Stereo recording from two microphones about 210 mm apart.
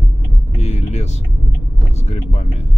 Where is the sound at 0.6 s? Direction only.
30° left (ahead or behind).